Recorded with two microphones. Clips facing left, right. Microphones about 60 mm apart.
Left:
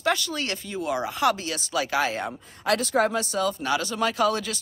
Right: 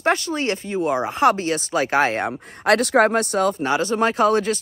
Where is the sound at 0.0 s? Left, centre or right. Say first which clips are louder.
Right 5 dB; right.